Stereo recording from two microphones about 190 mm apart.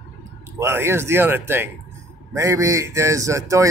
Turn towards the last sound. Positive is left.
turn(degrees=-15)  # may be behind; listen again after turning